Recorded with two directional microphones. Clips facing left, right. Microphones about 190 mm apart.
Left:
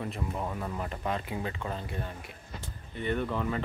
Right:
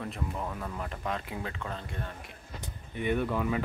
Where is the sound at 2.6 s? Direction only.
15° right (ahead or behind).